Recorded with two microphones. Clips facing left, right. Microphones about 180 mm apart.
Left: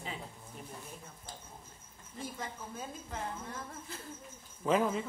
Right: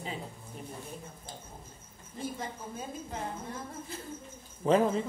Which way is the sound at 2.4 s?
20° right (ahead or behind).